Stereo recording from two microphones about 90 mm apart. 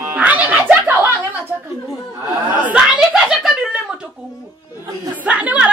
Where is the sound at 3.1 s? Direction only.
5° right (ahead or behind).